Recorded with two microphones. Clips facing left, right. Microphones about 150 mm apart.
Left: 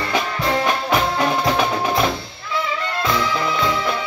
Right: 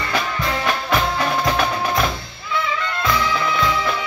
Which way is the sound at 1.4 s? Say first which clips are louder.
Left 1 dB; 20° left (ahead or behind).